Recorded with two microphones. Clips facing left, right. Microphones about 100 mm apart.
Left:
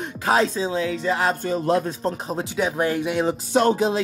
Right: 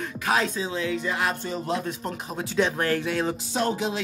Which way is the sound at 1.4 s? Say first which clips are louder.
Left 7 dB; 50° left (ahead or behind).